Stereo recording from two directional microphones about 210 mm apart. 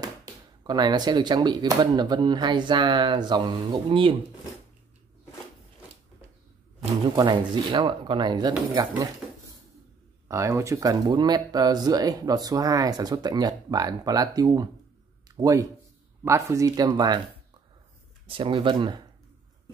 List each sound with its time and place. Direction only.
0.7 s speech: 20° right (ahead or behind)
7.2 s speech: 20° right (ahead or behind)
9.2 s drawer open or close: 10° right (ahead or behind)
10.2 s speech: 15° right (ahead or behind)
18.2 s speech: 25° right (ahead or behind)